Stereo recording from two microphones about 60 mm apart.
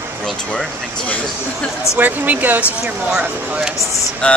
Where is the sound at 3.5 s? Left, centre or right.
Centre.